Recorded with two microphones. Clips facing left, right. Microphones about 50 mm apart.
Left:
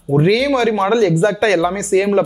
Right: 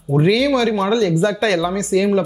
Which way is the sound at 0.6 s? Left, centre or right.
Left.